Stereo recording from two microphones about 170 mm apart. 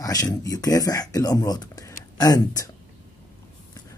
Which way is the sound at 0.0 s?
20° left (ahead or behind).